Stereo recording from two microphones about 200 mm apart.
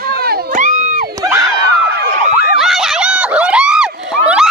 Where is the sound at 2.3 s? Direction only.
Centre (ahead or behind).